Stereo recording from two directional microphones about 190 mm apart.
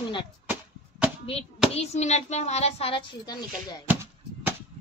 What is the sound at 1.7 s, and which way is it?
A child's voice, 35° left (ahead or behind).